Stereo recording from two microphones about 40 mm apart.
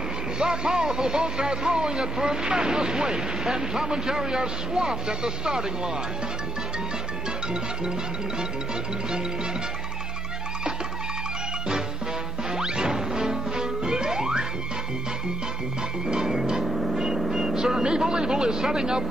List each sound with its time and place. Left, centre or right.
0.4 s speech: centre
12.5 s music: centre
16.1 s music: centre
16.9 s vehicle: centre
17.2 s speech: centre